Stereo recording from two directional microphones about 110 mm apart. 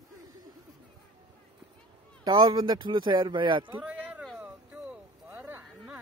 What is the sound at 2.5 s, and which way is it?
Speech, 45° right (ahead or behind).